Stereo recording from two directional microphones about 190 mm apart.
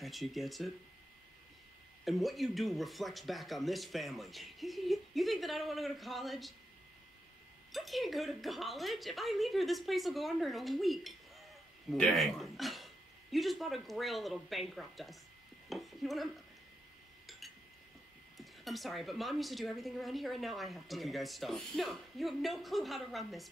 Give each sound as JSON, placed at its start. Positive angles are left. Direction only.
{"t": 0.0, "sound": "a woman's voice", "side_deg": 0}
{"t": 2.0, "sound": "a woman's voice", "side_deg": 0}
{"t": 7.7, "sound": "a woman's voice", "side_deg": 0}
{"t": 15.7, "sound": "a sound", "side_deg": 0}
{"t": 18.4, "sound": "a woman's voice", "side_deg": 0}